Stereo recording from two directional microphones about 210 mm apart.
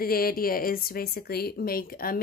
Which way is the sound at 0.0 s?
45° left (ahead or behind).